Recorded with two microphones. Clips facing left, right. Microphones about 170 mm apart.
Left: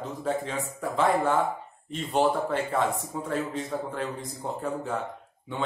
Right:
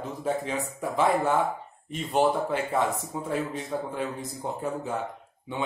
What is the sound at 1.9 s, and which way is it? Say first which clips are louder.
Speech: right 1 dB; 5° right (ahead or behind).